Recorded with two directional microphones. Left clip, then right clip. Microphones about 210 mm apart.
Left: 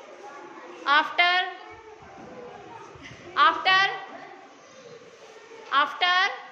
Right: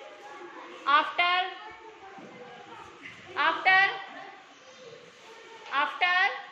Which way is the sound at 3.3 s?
20° left (ahead or behind).